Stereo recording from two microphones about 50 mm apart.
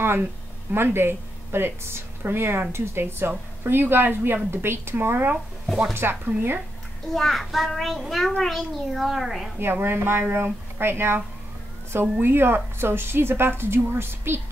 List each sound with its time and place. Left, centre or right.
0.0 s a woman's voice: right
7.2 s a child's voice: centre
9.6 s a woman's voice: right